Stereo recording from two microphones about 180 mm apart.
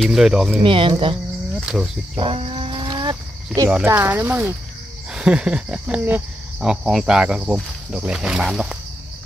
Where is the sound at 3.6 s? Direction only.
10° right (ahead or behind).